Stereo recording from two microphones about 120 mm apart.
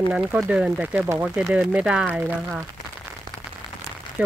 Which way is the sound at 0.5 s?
10° right (ahead or behind).